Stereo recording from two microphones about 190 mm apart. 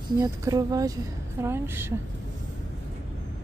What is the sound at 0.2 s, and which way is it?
A woman's voice, 20° right (ahead or behind).